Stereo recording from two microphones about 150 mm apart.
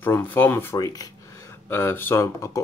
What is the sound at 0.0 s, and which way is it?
Speech, 15° left (ahead or behind).